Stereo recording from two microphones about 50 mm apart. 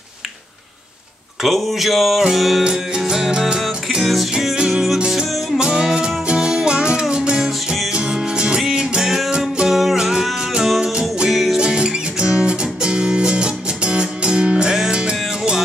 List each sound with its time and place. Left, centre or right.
1.4 s a sound: centre
2.6 s music: centre
4.6 s music: centre
11.6 s music: centre